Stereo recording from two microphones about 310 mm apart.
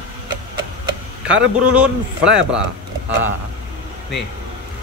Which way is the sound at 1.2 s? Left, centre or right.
Centre.